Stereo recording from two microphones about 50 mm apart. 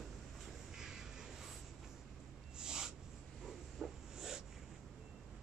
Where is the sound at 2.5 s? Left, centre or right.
Centre.